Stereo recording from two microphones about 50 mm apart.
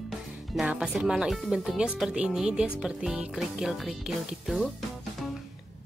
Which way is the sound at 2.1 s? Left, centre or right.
Centre.